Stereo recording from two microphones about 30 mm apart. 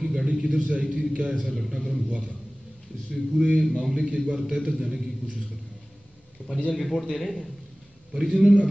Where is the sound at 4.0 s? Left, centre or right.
Right.